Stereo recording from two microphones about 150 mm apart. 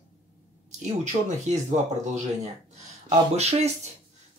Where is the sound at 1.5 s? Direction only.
50° right (ahead or behind).